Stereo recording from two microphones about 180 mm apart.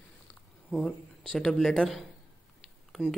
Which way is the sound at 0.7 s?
5° left (ahead or behind).